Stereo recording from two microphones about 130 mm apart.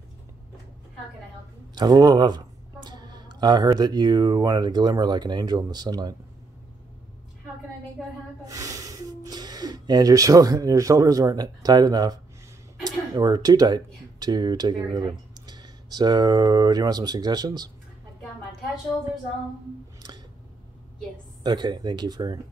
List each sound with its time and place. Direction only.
1.8 s speech: 30° right (ahead or behind)
8.5 s speech: 25° right (ahead or behind)
21.4 s speech: 35° right (ahead or behind)